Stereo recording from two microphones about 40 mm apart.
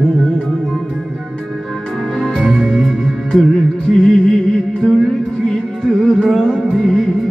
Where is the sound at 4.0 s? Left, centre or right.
Centre.